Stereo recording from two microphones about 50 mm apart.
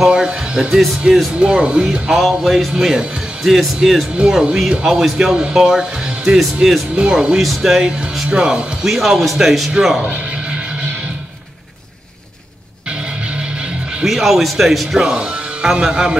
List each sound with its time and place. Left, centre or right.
0.0 s speech: centre
1.4 s speech: centre
2.0 s speech: centre
6.3 s speech: centre
7.0 s speech: centre
8.3 s speech: centre
8.8 s speech: centre
13.3 s music: centre
14.0 s speech: centre
15.1 s speech: centre